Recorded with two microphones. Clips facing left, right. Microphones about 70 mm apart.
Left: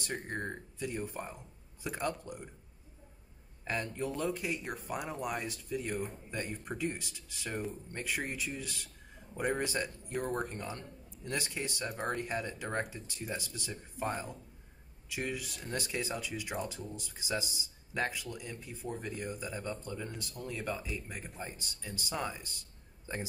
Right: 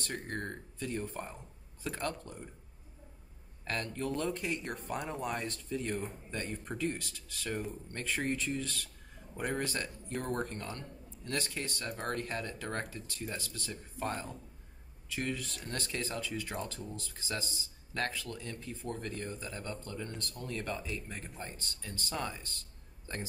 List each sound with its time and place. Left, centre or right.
0.0 s speech: centre
3.6 s speech: centre